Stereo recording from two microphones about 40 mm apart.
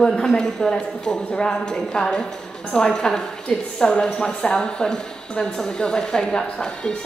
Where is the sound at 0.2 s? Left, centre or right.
Centre.